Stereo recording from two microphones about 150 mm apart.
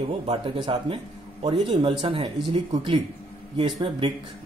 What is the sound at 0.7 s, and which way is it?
Speech, 35° right (ahead or behind).